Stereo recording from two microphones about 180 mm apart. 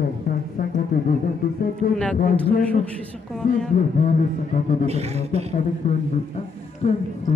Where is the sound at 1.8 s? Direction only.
50° left (ahead or behind).